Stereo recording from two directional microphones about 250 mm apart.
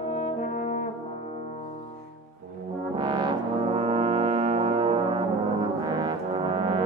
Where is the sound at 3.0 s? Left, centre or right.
Centre.